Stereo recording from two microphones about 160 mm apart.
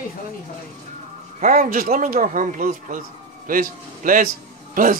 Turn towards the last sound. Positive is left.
turn(degrees=-60)  # may be behind; listen again after turning